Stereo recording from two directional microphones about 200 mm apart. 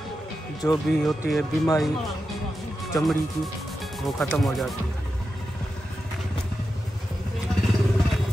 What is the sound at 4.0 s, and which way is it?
Speech, centre (ahead or behind).